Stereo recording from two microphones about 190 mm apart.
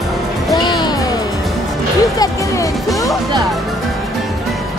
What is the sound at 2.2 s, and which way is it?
Music, 15° left (ahead or behind).